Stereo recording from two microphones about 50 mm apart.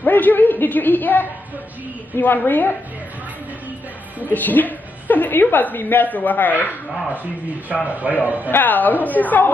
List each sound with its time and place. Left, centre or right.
0.0 s a woman's voice: left
4.3 s a woman's voice: left
7.9 s a man's voice: right
8.5 s a woman's voice: left